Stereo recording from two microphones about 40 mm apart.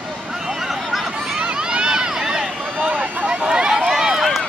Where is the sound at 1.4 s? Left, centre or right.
Right.